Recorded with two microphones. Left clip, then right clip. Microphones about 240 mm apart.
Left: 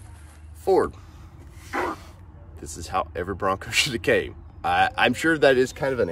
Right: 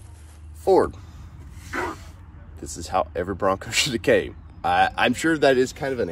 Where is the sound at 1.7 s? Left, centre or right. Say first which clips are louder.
Left 1 dB; left.